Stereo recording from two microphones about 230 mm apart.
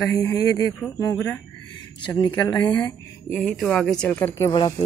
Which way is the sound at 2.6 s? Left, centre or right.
Centre.